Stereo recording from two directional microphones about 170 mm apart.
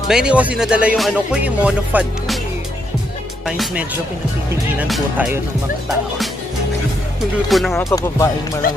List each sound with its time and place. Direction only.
0.1 s music: 5° right (ahead or behind)
3.4 s speech: 5° right (ahead or behind)
4.7 s music: 5° right (ahead or behind)
7.4 s speech: centre (ahead or behind)
7.7 s speech: 20° left (ahead or behind)
8.6 s speech: 55° left (ahead or behind)